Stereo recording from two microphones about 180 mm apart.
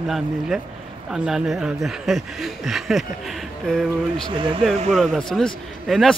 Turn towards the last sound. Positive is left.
turn(degrees=0)  # may be behind; listen again after turning